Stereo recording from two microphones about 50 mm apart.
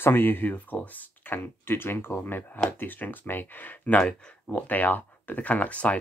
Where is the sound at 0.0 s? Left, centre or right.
Left.